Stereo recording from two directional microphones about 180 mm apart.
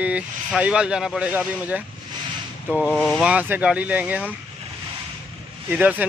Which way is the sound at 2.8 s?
5° left (ahead or behind).